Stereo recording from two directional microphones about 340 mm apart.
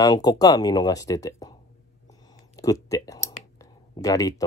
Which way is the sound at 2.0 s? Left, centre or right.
Centre.